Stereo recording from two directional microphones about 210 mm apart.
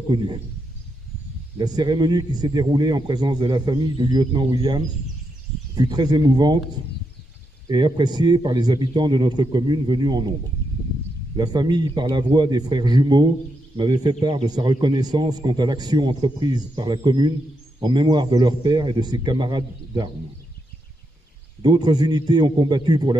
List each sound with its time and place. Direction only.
1.6 s a man's voice: 20° right (ahead or behind)
7.6 s a man's voice: 20° right (ahead or behind)
10.6 s a sound: 10° left (ahead or behind)
11.3 s a man's voice: 20° right (ahead or behind)
21.6 s a man's voice: 20° right (ahead or behind)